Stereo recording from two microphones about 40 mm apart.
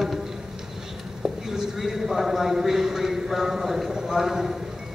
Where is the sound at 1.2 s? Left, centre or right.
Centre.